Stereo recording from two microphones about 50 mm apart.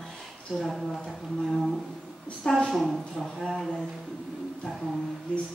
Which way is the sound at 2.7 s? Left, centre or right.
Centre.